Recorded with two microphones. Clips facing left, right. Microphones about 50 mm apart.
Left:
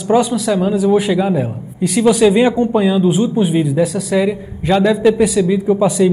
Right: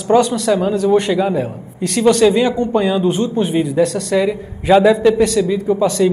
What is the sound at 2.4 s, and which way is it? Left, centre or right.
Speech, left.